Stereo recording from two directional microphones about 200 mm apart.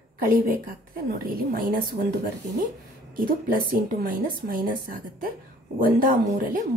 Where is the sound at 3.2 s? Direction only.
45° right (ahead or behind).